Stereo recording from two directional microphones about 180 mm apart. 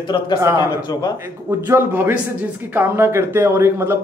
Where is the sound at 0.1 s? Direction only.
25° left (ahead or behind).